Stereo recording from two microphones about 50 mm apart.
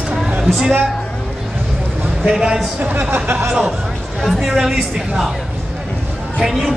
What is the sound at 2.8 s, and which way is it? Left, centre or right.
Speech, right.